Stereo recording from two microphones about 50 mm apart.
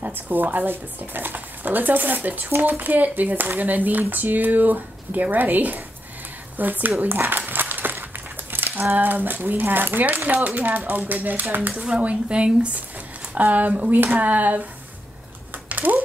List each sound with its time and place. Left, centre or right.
0.0 s speech: right
7.0 s crumpling: right
8.5 s a sound: right
8.9 s speech: right
11.7 s speech: centre; by 14.7 s right
15.7 s a sound: right